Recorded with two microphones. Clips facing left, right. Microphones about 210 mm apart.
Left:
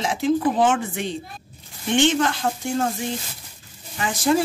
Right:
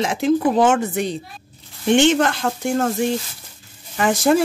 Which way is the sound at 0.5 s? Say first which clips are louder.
Right 4 dB; 45° right (ahead or behind).